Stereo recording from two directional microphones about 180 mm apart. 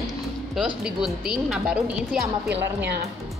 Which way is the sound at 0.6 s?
5° right (ahead or behind).